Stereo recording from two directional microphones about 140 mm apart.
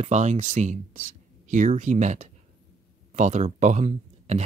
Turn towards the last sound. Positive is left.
turn(degrees=-55)  # may be behind; listen again after turning